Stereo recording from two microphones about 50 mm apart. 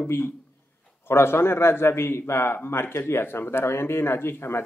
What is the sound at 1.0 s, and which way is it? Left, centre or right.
A man's voice, left.